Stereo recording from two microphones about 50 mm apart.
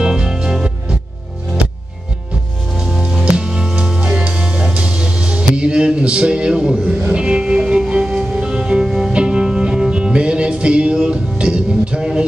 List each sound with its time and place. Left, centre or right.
0.0 s music: centre
3.3 s music: centre
8.8 s music: centre